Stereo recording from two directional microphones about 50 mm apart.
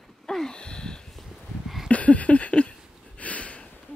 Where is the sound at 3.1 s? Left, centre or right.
Left.